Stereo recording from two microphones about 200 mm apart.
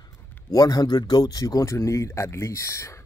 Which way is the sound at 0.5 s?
20° left (ahead or behind).